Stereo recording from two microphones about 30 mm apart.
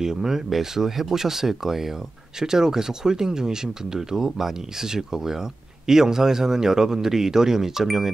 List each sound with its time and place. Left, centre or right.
0.0 s speech: centre